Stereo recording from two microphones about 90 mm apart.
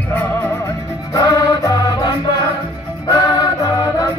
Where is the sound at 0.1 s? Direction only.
20° left (ahead or behind).